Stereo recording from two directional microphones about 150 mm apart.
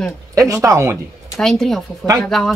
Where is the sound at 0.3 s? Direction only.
20° right (ahead or behind).